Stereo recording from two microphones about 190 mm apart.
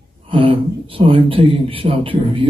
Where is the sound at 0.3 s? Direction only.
30° right (ahead or behind).